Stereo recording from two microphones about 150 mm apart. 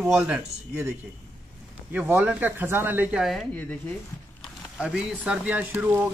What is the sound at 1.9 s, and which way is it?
Speech, 10° right (ahead or behind).